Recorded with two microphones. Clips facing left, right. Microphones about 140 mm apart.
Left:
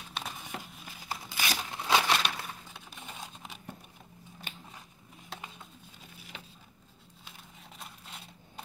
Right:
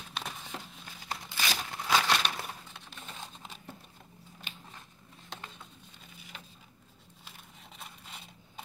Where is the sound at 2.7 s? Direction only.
10° left (ahead or behind).